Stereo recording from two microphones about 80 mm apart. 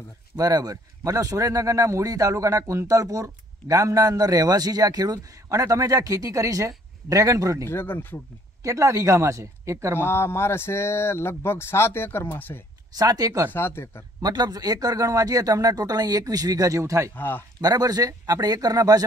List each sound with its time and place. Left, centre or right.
0.4 s speech: right
7.6 s speech: left
8.6 s speech: right
9.9 s speech: left
12.9 s speech: right
13.5 s speech: left
14.2 s speech: right
17.1 s speech: left
17.6 s speech: right